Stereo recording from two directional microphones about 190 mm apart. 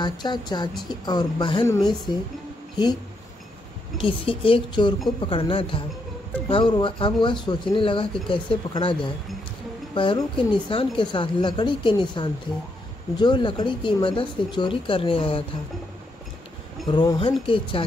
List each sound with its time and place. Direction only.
0.0 s speech: 25° left (ahead or behind)
4.0 s speech: 30° left (ahead or behind)
16.8 s speech: 20° left (ahead or behind)